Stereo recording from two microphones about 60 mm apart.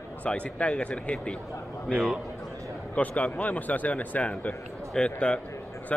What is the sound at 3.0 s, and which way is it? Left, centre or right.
A man's voice, left.